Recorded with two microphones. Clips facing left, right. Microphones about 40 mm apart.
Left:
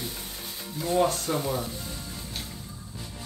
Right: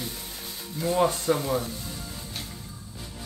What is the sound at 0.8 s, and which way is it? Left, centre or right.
Speech, centre.